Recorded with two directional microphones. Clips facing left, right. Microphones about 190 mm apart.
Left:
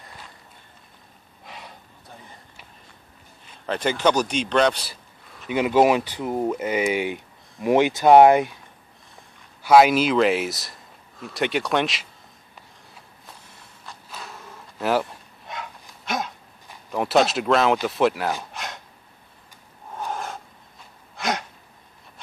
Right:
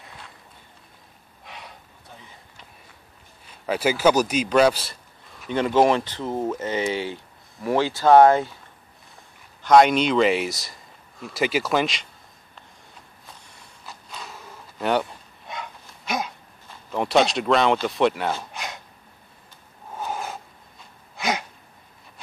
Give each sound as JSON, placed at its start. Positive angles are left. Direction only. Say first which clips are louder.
{"t": 1.4, "sound": "gasp", "louder": "left 1 dB", "side_deg": 0}
{"t": 3.6, "sound": "speech", "louder": "right 2 dB", "side_deg": -5}
{"t": 5.5, "sound": "speech", "louder": "left 1 dB", "side_deg": 10}
{"t": 9.6, "sound": "speech", "louder": "left 1 dB", "side_deg": 5}
{"t": 13.5, "sound": "a sound", "louder": "right 2 dB", "side_deg": 5}
{"t": 16.9, "sound": "speech", "louder": "even", "side_deg": 0}
{"t": 18.5, "sound": "a sound", "louder": "even", "side_deg": 0}
{"t": 20.0, "sound": "snort", "louder": "even", "side_deg": -5}
{"t": 21.2, "sound": "a sound", "louder": "even", "side_deg": 0}